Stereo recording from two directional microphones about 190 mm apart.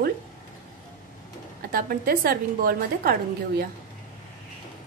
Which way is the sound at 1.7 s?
50° right (ahead or behind).